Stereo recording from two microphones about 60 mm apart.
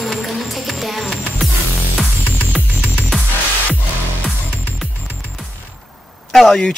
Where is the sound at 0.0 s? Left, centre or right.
Centre.